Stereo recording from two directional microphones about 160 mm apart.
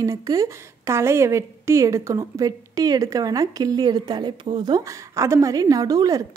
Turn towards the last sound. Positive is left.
turn(degrees=-20)  # may be behind; listen again after turning